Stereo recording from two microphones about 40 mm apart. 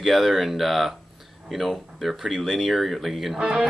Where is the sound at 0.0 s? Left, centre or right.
Centre.